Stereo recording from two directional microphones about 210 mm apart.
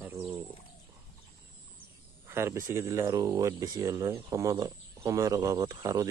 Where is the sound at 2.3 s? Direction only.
10° right (ahead or behind).